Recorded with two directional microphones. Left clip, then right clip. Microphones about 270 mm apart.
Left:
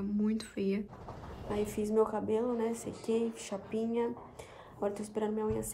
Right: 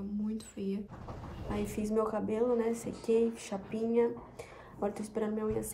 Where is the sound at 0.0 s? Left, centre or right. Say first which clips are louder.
Left 4 dB; centre.